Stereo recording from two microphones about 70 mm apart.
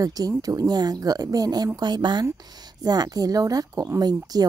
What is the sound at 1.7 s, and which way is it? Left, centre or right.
Speech, right.